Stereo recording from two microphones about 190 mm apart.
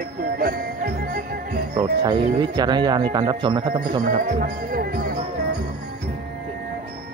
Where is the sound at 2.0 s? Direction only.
20° right (ahead or behind).